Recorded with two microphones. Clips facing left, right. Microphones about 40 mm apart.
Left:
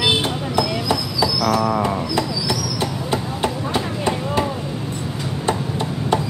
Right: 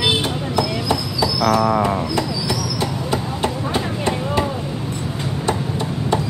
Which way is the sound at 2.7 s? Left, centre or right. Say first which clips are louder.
Right 1 dB; left.